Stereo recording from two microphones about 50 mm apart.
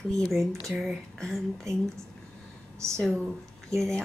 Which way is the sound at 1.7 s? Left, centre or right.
Right.